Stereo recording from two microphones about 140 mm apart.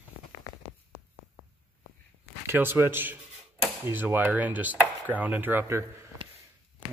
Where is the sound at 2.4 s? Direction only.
15° right (ahead or behind).